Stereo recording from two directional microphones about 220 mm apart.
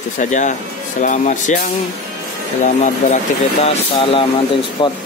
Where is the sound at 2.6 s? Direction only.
35° left (ahead or behind).